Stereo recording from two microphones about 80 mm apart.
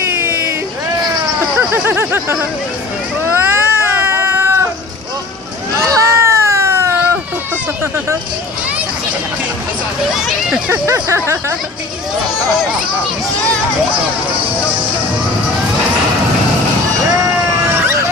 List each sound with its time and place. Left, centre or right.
0.0 s a sound: right
1.6 s a sound: right
3.3 s cat: right
5.9 s baby cry: right
10.1 s speech: centre
10.7 s speech: right